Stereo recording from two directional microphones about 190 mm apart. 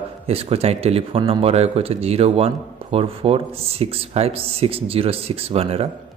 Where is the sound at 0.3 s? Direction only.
30° right (ahead or behind).